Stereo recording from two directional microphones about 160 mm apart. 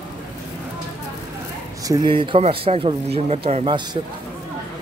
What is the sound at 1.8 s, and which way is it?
Speech, 25° right (ahead or behind).